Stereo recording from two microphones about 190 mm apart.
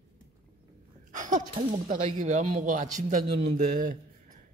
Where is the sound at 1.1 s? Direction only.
40° right (ahead or behind).